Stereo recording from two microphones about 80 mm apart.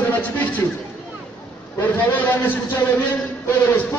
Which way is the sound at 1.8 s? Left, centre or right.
Left.